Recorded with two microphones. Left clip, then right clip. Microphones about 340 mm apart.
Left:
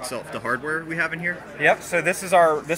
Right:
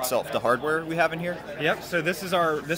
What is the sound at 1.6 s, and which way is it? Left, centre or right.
Speech, centre.